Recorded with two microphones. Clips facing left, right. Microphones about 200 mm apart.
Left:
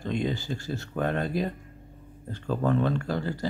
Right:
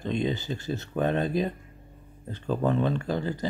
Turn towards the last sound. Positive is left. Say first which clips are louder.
# right 1 dB
turn(degrees=-20)  # may be behind; listen again after turning